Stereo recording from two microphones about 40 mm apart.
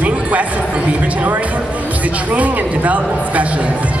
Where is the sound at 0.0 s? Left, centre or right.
Right.